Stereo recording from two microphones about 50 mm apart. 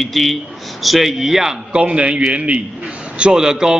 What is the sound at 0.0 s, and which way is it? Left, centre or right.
Speech, centre.